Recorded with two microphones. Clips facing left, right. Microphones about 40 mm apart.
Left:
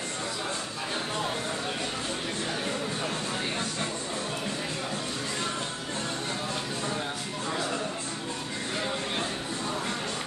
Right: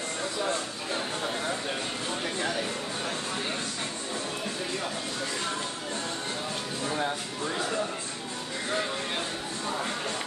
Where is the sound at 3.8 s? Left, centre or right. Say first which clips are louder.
Left 2 dB; centre.